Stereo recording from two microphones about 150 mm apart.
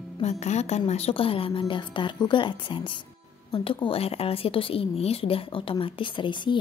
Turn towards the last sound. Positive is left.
turn(degrees=30)  # may be behind; listen again after turning